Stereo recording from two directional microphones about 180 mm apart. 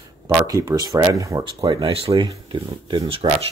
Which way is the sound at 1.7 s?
30° right (ahead or behind).